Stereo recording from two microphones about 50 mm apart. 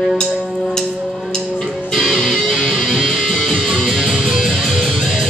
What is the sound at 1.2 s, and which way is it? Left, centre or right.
Music, centre.